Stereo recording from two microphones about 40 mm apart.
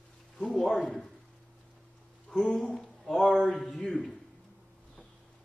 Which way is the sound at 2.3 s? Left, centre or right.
Centre.